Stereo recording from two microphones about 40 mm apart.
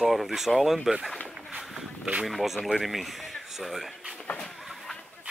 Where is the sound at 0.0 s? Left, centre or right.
Centre.